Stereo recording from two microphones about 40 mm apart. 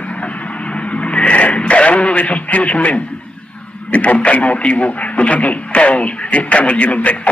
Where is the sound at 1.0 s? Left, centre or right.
Left.